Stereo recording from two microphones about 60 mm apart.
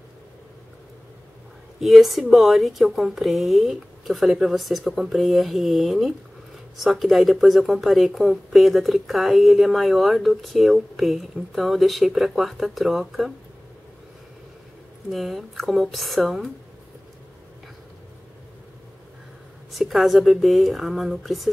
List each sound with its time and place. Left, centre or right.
1.8 s a woman's voice: centre
15.0 s a woman's voice: centre
19.7 s a woman's voice: centre